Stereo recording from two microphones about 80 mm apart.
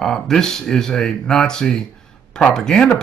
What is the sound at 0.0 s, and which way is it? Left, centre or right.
Speech, centre.